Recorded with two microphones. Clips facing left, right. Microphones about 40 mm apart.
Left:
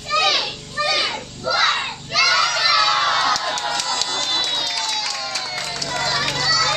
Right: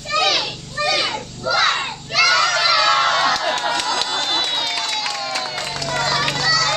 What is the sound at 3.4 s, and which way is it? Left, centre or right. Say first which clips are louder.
Crowd: right 3 dB; right.